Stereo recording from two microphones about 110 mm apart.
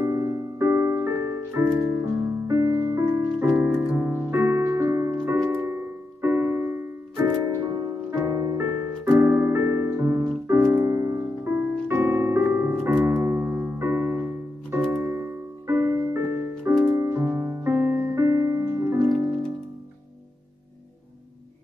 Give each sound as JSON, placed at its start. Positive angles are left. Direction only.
{"t": 0.0, "sound": "music", "side_deg": -25}
{"t": 3.5, "sound": "music", "side_deg": -15}